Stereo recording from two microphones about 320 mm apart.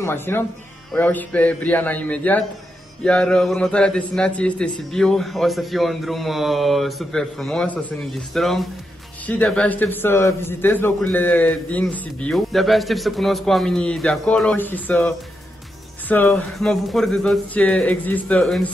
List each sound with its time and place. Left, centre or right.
0.0 s a man's voice: centre